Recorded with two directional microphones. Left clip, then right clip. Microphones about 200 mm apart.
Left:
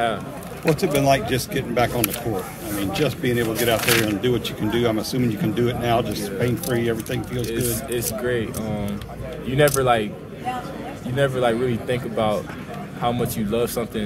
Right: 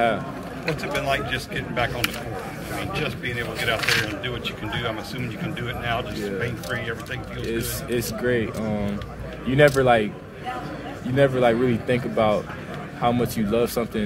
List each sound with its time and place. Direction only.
0.7 s speech: 45° left (ahead or behind)
3.0 s speech: 45° left (ahead or behind)
7.9 s speech: 5° right (ahead or behind)
11.1 s speech: 5° right (ahead or behind)